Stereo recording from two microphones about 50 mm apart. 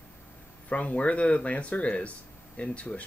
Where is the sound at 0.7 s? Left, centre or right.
Left.